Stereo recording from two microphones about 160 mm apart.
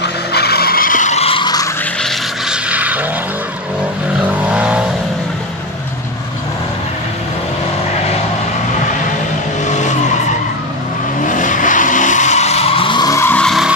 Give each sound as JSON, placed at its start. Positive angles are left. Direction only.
{"t": 0.0, "sound": "skidding", "side_deg": 90}
{"t": 2.0, "sound": "vehicle", "side_deg": -5}
{"t": 4.3, "sound": "vehicle", "side_deg": -10}
{"t": 9.7, "sound": "vehicle", "side_deg": 50}
{"t": 11.2, "sound": "vehicle", "side_deg": 55}